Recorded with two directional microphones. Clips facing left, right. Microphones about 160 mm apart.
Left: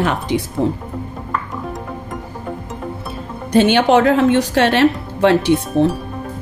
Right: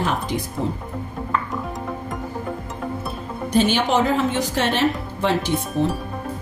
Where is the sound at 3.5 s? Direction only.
70° left (ahead or behind).